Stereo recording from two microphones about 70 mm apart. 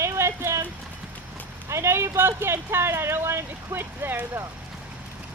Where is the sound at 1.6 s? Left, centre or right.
Right.